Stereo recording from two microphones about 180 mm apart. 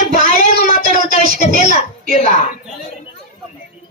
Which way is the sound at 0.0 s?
45° left (ahead or behind).